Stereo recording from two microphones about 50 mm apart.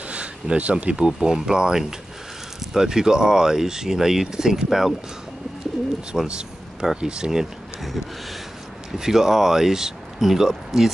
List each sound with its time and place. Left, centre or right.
0.1 s speech: right
0.9 s speech: centre
6.1 s speech: centre
8.9 s speech: centre